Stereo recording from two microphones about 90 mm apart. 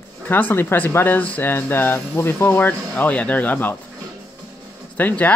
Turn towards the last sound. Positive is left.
turn(degrees=20)  # may be behind; listen again after turning